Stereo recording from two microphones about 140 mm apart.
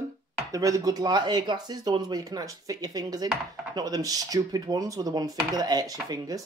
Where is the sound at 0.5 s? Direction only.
25° right (ahead or behind).